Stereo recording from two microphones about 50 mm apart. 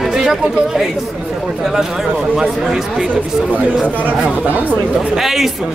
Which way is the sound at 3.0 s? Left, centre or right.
Right.